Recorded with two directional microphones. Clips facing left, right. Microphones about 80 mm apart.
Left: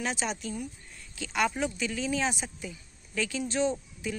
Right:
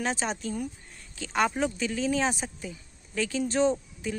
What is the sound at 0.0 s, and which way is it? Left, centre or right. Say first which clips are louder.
Speech: right 2 dB; right.